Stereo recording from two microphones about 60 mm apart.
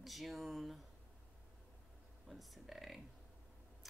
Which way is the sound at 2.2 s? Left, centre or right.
Centre.